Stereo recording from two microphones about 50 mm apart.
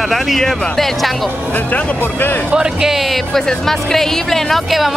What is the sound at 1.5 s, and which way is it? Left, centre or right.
Speech, left.